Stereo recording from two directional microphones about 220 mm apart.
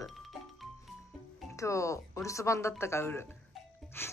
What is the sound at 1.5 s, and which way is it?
Speech, 15° left (ahead or behind).